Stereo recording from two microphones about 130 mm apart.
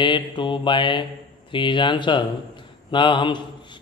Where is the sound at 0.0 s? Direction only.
40° left (ahead or behind).